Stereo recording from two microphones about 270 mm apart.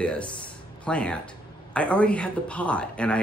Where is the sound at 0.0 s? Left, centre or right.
Centre.